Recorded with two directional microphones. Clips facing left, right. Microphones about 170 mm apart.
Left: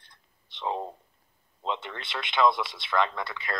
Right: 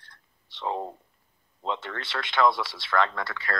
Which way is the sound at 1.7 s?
20° left (ahead or behind).